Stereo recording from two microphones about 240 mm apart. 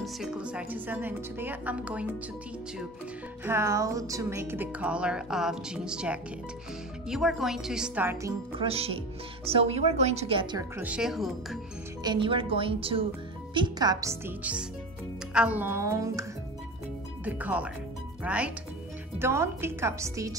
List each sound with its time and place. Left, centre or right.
0.0 s speech: centre
3.4 s music: centre
7.1 s speech: centre
8.6 s a woman's voice: right
10.8 s speech: centre
12.0 s a woman's voice: centre
13.6 s music: centre
18.2 s speech: centre
19.1 s music: centre